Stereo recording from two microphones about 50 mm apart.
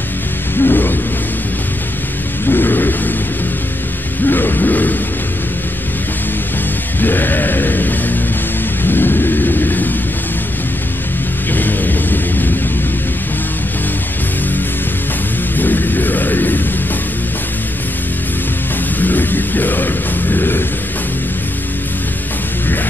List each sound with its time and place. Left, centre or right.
0.6 s music: left
2.4 s a sound: left
4.3 s music: left
7.0 s music: left
8.8 s vehicle: left
11.5 s music: left
15.5 s music: left
18.9 s music: left